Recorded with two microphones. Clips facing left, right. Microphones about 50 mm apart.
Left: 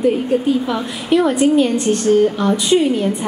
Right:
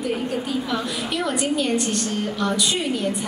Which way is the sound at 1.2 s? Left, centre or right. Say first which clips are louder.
Left 7 dB; left.